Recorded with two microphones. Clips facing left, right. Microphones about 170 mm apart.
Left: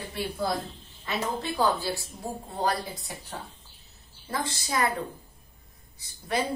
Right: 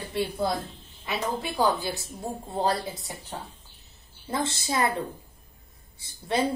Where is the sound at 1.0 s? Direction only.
10° right (ahead or behind).